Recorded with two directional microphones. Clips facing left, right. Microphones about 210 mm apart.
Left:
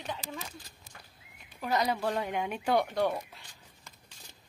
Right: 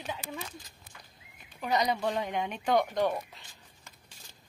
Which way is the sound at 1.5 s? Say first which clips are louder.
Right 1 dB; centre (ahead or behind).